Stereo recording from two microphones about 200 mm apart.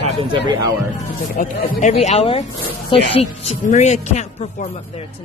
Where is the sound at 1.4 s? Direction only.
35° left (ahead or behind).